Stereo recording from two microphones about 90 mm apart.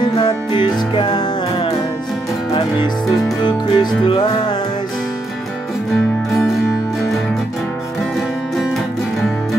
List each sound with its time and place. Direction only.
0.0 s music: 65° left (ahead or behind)
3.4 s music: 65° left (ahead or behind)
4.2 s music: 50° left (ahead or behind)